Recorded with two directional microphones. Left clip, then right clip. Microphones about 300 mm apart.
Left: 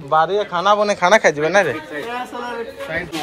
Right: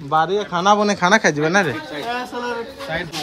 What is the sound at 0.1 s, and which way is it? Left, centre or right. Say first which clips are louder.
Speech: left 2 dB; centre.